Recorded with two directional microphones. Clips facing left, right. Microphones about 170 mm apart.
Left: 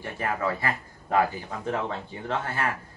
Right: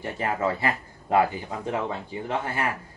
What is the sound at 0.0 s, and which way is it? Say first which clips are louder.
A man's voice: right 2 dB; 20° right (ahead or behind).